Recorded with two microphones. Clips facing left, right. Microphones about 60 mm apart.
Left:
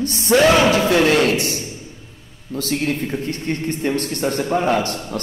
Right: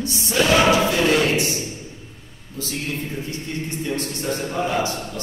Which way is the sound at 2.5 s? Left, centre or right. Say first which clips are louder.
Left 7 dB; left.